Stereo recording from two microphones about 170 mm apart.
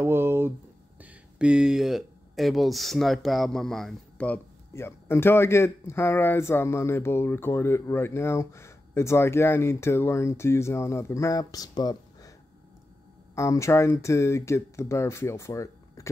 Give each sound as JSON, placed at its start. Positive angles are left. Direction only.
{"t": 0.0, "sound": "a sound", "side_deg": -15}
{"t": 1.0, "sound": "speech", "side_deg": -5}
{"t": 13.3, "sound": "speech", "side_deg": 15}